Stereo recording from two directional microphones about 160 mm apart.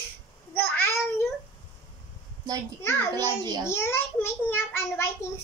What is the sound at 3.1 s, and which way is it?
Speech, 25° right (ahead or behind).